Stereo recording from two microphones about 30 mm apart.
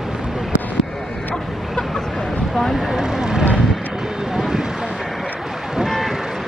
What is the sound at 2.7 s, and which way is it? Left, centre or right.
Vehicle, centre.